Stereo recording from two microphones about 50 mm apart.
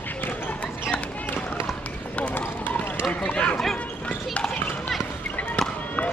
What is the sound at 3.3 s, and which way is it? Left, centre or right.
Bow-wow, left.